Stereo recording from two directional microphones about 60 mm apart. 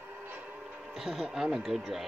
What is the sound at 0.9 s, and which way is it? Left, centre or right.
Speech, centre.